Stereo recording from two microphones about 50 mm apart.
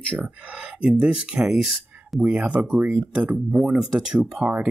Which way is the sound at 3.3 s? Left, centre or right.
Centre.